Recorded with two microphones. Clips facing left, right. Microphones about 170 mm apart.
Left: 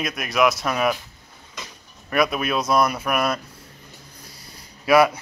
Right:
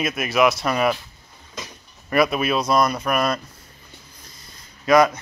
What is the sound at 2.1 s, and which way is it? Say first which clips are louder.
Speech: right 2 dB; centre (ahead or behind).